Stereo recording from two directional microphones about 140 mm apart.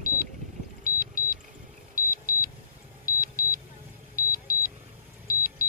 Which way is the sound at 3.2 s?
90° left.